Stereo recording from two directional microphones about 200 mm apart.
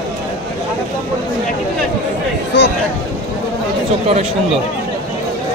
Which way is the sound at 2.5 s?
60° left (ahead or behind).